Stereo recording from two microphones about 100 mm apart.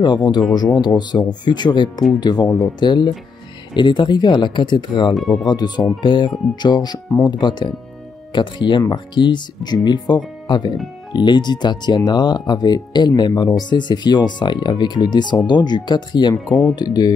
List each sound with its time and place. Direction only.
0.0 s speech: 45° left (ahead or behind)
5.1 s speech: centre (ahead or behind)
5.4 s speech: 45° left (ahead or behind)